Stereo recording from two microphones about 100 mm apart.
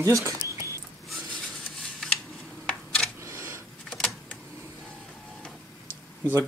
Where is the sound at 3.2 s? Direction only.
30° right (ahead or behind).